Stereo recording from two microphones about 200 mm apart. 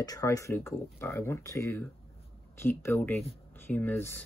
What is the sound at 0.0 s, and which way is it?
Speech, 15° left (ahead or behind).